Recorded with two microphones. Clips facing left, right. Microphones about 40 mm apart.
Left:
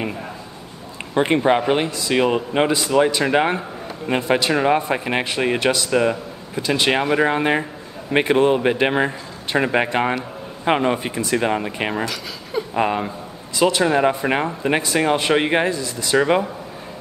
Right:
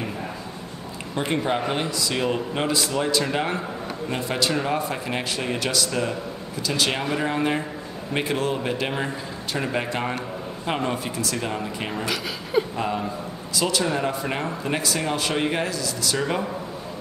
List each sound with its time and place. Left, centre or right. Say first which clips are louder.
1.1 s a man's voice: left 8 dB; left